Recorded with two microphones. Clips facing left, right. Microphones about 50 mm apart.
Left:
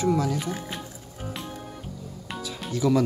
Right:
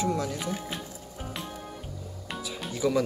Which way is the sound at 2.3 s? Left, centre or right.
Centre.